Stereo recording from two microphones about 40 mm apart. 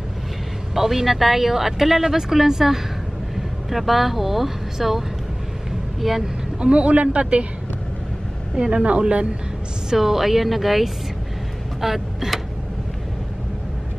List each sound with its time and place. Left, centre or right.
0.7 s speech: centre
6.6 s a man's voice: right
8.5 s speech: right
9.8 s speech: centre
11.8 s a sound: centre